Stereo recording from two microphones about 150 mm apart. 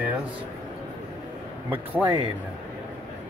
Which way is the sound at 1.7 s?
10° right (ahead or behind).